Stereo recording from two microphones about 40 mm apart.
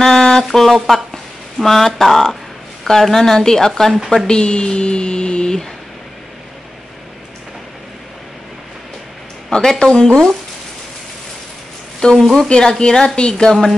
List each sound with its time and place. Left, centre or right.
0.0 s a sound: centre
0.8 s a woman's voice: centre
4.3 s a sound: left
9.5 s a woman's voice: centre
12.0 s a woman's voice: centre
13.5 s speech: centre